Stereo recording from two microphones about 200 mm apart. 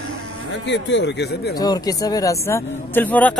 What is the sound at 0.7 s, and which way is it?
Speech, 60° left (ahead or behind).